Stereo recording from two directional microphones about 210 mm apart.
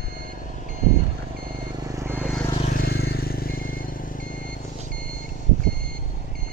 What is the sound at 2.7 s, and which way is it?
Vehicle, 50° left (ahead or behind).